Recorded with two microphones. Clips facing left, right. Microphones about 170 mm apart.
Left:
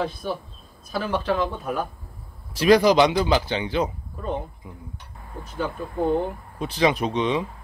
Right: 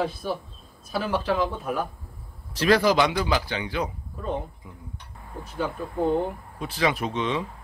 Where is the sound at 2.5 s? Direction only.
15° left (ahead or behind).